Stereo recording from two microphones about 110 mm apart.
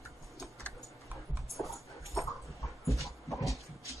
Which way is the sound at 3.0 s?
Centre (ahead or behind).